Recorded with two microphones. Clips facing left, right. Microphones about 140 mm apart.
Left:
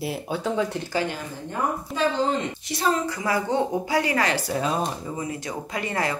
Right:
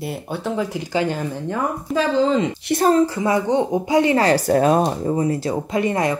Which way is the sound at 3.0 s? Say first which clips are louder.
Right 6 dB; 25° right (ahead or behind).